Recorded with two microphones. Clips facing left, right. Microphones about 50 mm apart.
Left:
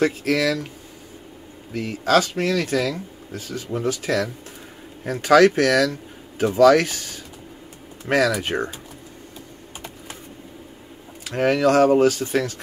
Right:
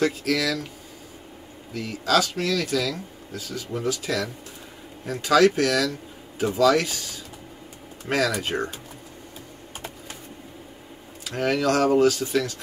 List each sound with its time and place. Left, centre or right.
0.0 s speech: left
1.7 s speech: left
8.4 s speech: left
11.2 s speech: left